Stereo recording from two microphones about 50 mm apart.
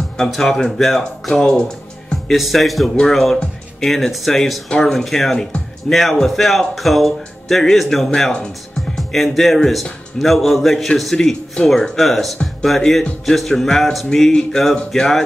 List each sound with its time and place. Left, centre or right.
0.2 s speech: centre
2.3 s speech: centre
8.1 s speech: centre
8.9 s speech: centre